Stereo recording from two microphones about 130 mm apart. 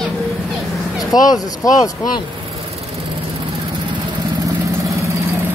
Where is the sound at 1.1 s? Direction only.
30° left (ahead or behind).